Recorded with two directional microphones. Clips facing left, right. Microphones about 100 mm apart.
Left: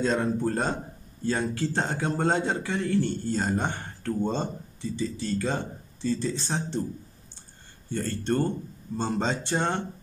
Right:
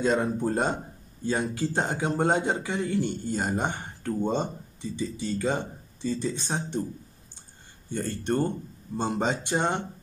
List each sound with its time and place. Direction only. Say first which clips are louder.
0.0 s speech: even; 15° right (ahead or behind)
7.9 s speech: even; 15° right (ahead or behind)